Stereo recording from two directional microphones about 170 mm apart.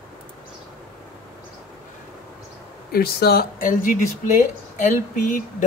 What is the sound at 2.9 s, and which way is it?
Speech, 65° left (ahead or behind).